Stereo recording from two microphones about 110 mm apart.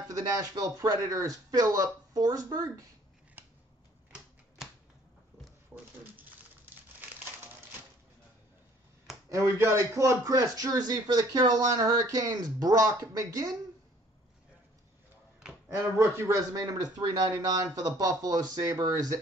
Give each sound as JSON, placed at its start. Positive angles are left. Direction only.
{"t": 0.1, "sound": "a man's voice", "side_deg": -35}
{"t": 3.4, "sound": "scissors", "side_deg": -20}
{"t": 6.1, "sound": "a sound", "side_deg": -15}
{"t": 9.3, "sound": "a man's voice", "side_deg": -25}
{"t": 15.7, "sound": "a man's voice", "side_deg": -25}